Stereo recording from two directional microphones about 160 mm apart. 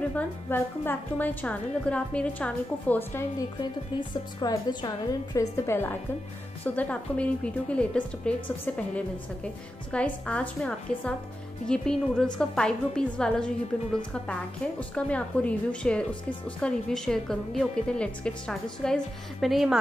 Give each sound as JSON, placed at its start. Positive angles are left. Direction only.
{"t": 0.1, "sound": "a woman's voice", "side_deg": 10}